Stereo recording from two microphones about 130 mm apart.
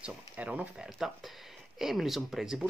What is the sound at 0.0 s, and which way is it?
Speech, 10° right (ahead or behind).